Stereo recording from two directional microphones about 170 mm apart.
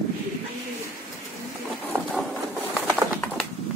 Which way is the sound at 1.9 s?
15° right (ahead or behind).